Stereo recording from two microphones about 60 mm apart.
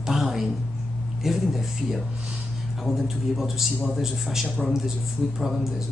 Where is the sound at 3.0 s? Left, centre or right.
Centre.